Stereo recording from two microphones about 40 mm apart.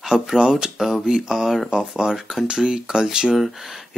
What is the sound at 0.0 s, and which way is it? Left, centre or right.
Speech, centre.